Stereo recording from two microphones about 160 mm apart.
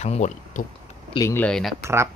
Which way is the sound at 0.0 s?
45° left (ahead or behind).